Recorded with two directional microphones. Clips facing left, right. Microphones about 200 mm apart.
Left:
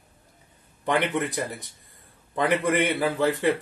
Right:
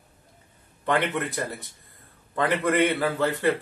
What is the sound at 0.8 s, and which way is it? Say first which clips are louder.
A man's voice: left 1 dB; 15° left (ahead or behind).